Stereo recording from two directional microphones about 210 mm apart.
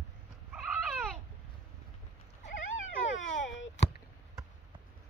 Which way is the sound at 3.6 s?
60° left (ahead or behind).